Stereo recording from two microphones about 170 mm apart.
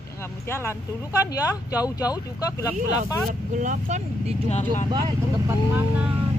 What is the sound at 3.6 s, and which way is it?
Speech, 45° right (ahead or behind).